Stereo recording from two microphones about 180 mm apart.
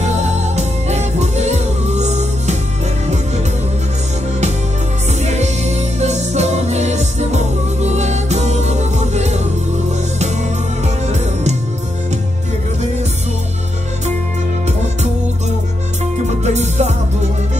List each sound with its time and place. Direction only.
0.0 s music: 40° right (ahead or behind)
5.2 s music: 40° right (ahead or behind)
11.1 s music: 40° right (ahead or behind)
16.4 s music: 40° right (ahead or behind)